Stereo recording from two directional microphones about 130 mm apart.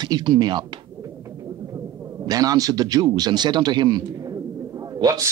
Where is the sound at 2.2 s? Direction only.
30° right (ahead or behind).